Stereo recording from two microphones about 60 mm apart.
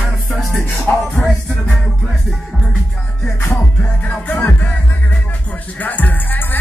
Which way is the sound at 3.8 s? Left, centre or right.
Left.